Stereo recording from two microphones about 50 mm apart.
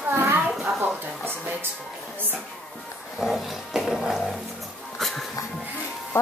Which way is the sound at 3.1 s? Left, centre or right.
Centre.